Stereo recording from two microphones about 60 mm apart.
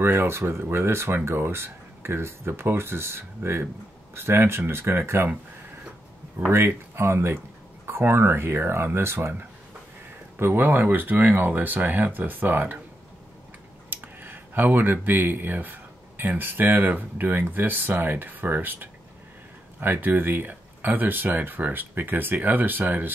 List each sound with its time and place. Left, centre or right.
0.0 s speech: right
6.5 s speech: right
10.3 s speech: right
13.8 s speech: right